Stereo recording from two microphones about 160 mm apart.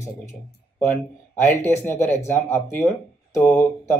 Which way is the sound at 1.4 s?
15° left (ahead or behind).